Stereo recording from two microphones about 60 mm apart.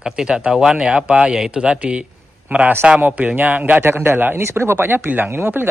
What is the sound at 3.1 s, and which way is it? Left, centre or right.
Speech, right.